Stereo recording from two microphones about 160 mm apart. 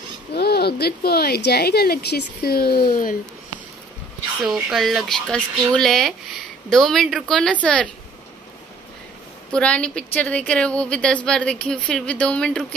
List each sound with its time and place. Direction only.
0.3 s speech: 90° left; by 2.8 s 70° left (ahead or behind)
2.9 s speech: 60° left (ahead or behind)
4.4 s speech: centre (ahead or behind)
9.5 s a woman's voice: 5° left (ahead or behind)